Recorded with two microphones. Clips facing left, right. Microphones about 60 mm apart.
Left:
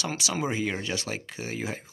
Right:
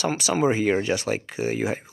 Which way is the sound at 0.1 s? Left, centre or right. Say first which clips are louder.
Right 8 dB; right.